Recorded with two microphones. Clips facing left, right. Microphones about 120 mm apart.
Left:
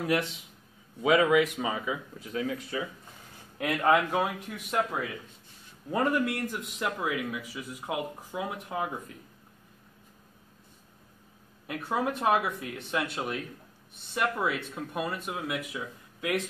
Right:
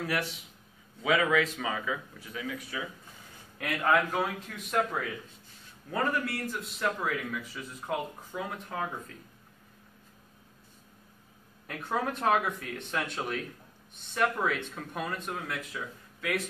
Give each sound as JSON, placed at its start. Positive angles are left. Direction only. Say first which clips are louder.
{"t": 0.0, "sound": "speech", "louder": "left 4 dB", "side_deg": 20}
{"t": 3.5, "sound": "speech", "louder": "left 2 dB", "side_deg": 15}
{"t": 11.6, "sound": "speech", "louder": "left 2 dB", "side_deg": 5}